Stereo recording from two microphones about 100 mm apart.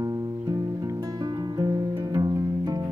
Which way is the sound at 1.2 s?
40° right (ahead or behind).